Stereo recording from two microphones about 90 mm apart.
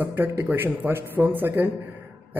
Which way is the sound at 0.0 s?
25° right (ahead or behind).